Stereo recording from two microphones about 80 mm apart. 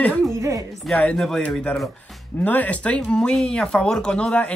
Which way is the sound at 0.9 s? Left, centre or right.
Centre.